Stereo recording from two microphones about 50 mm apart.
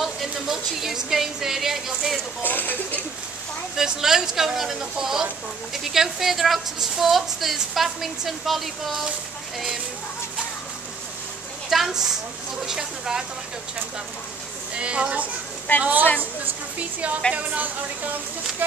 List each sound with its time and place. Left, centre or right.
0.0 s a woman's voice: centre
2.4 s speech: left
3.7 s a woman's voice: centre
11.7 s a woman's voice: centre
14.7 s speech: right
17.3 s speech: right